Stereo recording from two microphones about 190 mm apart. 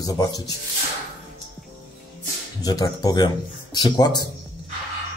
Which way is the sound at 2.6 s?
20° left (ahead or behind).